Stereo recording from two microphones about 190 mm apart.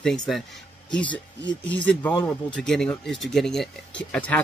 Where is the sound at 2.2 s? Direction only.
5° left (ahead or behind).